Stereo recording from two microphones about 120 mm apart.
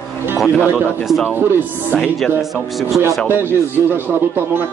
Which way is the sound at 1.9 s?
Centre (ahead or behind).